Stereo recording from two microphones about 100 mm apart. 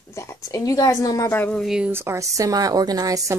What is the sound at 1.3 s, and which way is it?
Speech, 20° left (ahead or behind).